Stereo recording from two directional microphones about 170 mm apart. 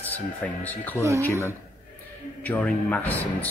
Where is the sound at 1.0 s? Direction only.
15° right (ahead or behind).